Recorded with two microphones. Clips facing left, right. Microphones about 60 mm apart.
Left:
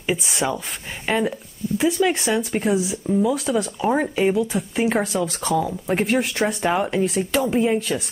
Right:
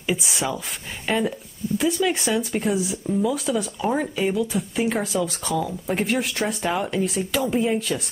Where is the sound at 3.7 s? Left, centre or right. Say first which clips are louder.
Left 3 dB; centre.